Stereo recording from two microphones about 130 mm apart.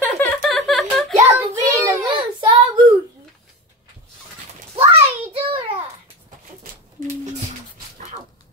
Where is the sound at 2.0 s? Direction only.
35° right (ahead or behind).